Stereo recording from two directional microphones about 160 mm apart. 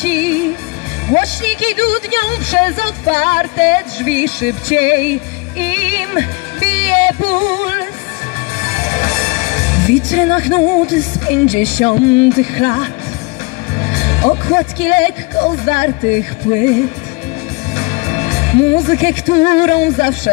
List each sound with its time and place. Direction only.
0.0 s music: 35° left (ahead or behind)
1.0 s speech: 35° left (ahead or behind)
5.6 s music: 35° left (ahead or behind)
8.7 s speech: 40° left (ahead or behind)
17.7 s music: 40° left (ahead or behind)